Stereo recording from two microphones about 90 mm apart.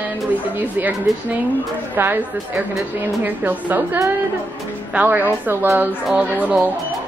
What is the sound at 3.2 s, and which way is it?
Speech, 20° right (ahead or behind).